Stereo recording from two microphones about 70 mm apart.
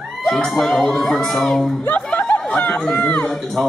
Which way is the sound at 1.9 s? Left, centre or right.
Left.